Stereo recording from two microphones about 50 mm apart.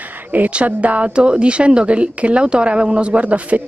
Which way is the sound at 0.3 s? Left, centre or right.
Right.